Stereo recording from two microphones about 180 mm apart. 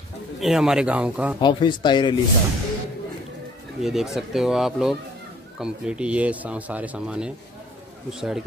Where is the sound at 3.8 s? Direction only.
Centre (ahead or behind).